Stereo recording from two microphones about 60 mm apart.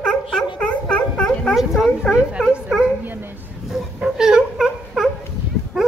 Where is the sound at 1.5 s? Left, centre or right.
Centre.